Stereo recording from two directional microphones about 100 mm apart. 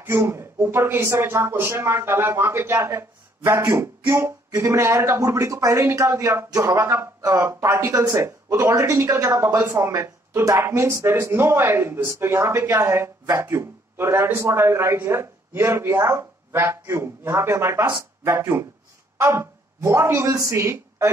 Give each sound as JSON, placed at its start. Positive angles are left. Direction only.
{"t": 0.0, "sound": "a woman's voice", "side_deg": -25}